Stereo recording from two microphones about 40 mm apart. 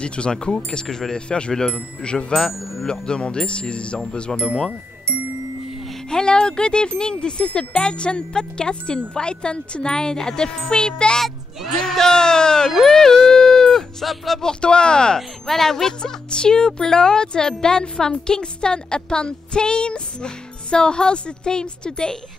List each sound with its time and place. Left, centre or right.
0.0 s speech: left
1.1 s speech: left
6.0 s speech: centre
11.1 s speech: centre
13.3 s a sound: centre
14.0 s speech: centre
14.4 s speech: left
15.1 s speech: centre
16.0 s speech: left